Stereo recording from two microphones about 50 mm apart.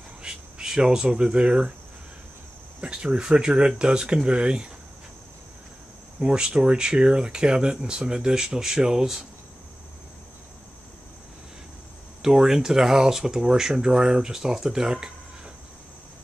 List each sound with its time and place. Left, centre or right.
0.2 s speech: centre
2.8 s speech: centre
6.1 s speech: centre
12.2 s speech: centre